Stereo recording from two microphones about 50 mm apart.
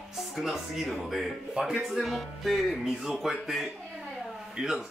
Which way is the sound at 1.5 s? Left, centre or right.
Centre.